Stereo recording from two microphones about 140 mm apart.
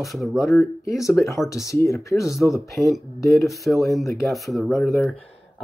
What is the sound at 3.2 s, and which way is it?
Speech, 20° left (ahead or behind).